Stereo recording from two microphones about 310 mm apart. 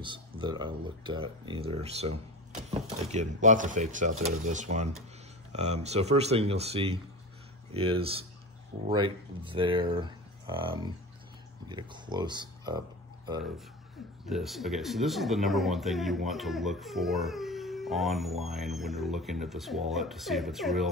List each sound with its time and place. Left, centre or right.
0.0 s speech: centre
14.2 s speech: centre